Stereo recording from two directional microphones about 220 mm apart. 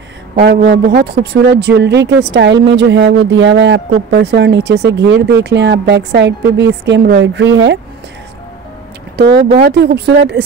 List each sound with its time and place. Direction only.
0.4 s speech: 45° right (ahead or behind)
9.1 s speech: 50° right (ahead or behind)